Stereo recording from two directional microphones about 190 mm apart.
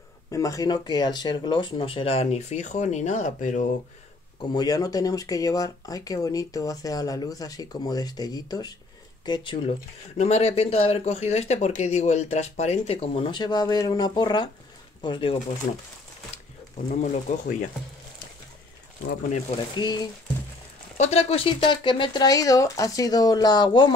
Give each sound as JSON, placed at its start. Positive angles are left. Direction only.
{"t": 0.3, "sound": "speech", "side_deg": 15}
{"t": 4.4, "sound": "speech", "side_deg": 20}
{"t": 10.1, "sound": "speech", "side_deg": 35}
{"t": 16.7, "sound": "speech", "side_deg": 40}
{"t": 19.8, "sound": "speech", "side_deg": 20}
{"t": 21.0, "sound": "speech", "side_deg": 30}